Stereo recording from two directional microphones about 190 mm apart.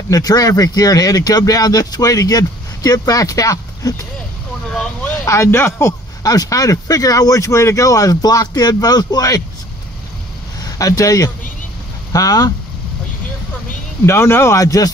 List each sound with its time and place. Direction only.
0.1 s speech: 20° left (ahead or behind)
5.2 s speech: 15° left (ahead or behind)
10.6 s speech: 20° left (ahead or behind)
14.0 s speech: 15° left (ahead or behind)